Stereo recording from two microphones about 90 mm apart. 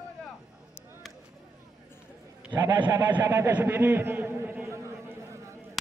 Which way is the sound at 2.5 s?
50° right (ahead or behind).